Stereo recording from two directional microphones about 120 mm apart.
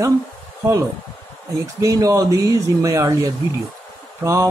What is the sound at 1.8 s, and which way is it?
Speech, 30° right (ahead or behind).